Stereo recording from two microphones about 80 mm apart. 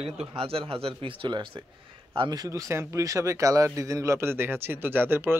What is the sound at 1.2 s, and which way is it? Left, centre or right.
Speech, right.